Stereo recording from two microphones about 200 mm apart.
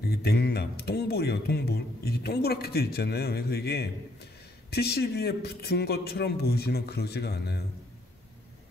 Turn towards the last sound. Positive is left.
turn(degrees=55)  # may be behind; listen again after turning